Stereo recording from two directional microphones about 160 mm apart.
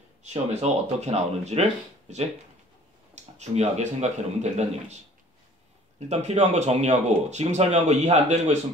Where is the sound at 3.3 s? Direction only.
45° right (ahead or behind).